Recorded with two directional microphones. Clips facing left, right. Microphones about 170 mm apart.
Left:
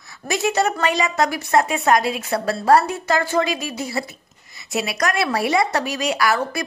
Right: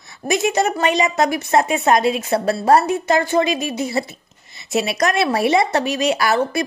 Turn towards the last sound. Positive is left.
turn(degrees=-25)  # may be behind; listen again after turning